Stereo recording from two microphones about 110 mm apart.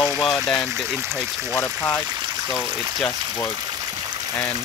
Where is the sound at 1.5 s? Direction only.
20° left (ahead or behind).